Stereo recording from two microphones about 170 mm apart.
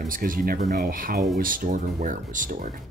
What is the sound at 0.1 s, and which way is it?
Speech, 55° right (ahead or behind).